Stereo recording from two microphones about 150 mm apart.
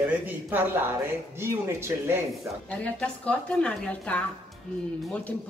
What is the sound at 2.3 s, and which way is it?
A woman's voice, 5° left (ahead or behind).